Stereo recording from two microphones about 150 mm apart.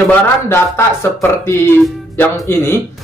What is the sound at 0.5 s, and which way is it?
Speech, 15° left (ahead or behind).